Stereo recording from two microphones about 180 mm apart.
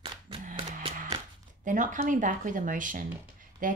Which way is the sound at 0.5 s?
30° right (ahead or behind).